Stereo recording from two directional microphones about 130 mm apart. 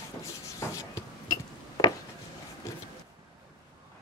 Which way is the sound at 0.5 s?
25° left (ahead or behind).